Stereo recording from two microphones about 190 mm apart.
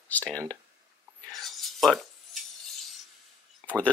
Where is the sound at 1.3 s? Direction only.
Centre (ahead or behind).